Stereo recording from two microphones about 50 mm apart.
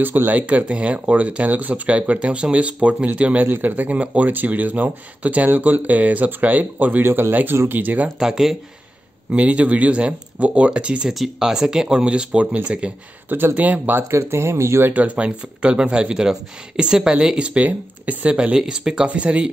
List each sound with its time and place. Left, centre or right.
0.0 s speech: right
7.1 s speech: right
7.6 s speech: right
8.2 s speech: centre
9.4 s speech: right
11.1 s speech: centre; by 13.9 s right
14.1 s speech: right
14.9 s speech: right
15.2 s speech: right
17.4 s speech: right
18.3 s speech: centre
19.0 s speech: right